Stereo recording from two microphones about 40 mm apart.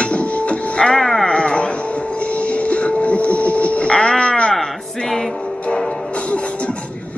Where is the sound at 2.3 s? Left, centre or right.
Left.